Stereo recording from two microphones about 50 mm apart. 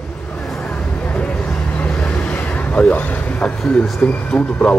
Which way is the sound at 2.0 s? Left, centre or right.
Left.